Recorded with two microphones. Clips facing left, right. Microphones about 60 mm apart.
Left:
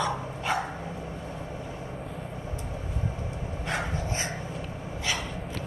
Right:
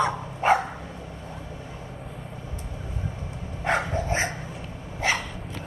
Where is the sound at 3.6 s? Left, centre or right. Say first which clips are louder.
Right 7 dB; right.